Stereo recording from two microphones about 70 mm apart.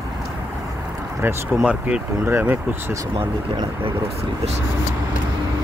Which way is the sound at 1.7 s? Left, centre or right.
Centre.